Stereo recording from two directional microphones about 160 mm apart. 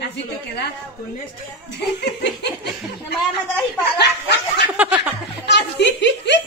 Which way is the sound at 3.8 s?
90° left.